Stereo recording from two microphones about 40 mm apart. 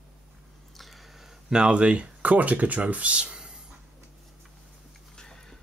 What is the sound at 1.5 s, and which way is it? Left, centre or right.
Speech, right.